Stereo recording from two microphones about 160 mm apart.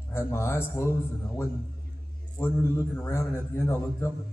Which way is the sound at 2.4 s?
15° left (ahead or behind).